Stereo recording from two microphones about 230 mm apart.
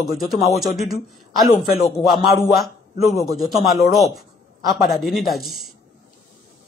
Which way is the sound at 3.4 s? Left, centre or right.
Centre.